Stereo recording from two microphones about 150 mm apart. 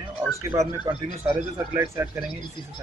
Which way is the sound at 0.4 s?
20° right (ahead or behind).